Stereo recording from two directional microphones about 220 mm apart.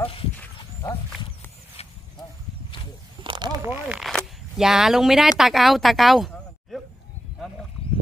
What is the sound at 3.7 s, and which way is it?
Speech, 5° right (ahead or behind).